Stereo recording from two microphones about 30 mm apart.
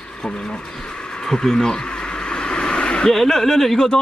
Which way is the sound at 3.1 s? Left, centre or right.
Centre.